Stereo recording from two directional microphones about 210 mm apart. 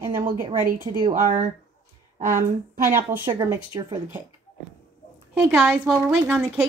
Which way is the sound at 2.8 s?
10° right (ahead or behind).